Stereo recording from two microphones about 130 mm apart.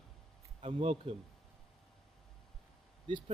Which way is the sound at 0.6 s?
45° right (ahead or behind).